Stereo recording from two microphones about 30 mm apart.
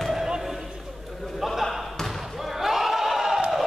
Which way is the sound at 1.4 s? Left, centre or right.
Centre.